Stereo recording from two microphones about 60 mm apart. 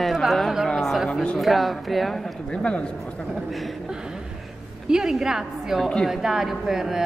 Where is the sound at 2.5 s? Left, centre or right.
Centre.